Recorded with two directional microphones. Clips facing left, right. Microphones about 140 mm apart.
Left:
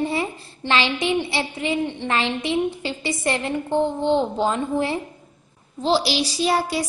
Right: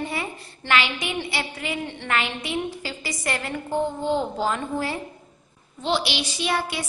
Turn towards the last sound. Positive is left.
turn(degrees=35)  # may be behind; listen again after turning